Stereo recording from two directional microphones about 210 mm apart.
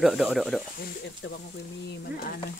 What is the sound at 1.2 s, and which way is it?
Speech, 60° left (ahead or behind).